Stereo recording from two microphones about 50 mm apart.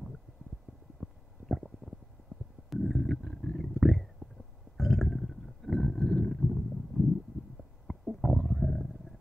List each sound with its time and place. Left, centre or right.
1.0 s stomach rumble: centre
2.7 s stomach rumble: centre
6.2 s a sound: centre
7.8 s stomach rumble: centre